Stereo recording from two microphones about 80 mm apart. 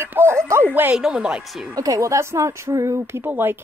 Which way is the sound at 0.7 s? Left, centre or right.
Right.